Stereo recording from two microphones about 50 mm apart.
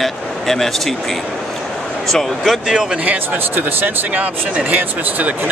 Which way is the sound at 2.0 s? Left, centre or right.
Centre.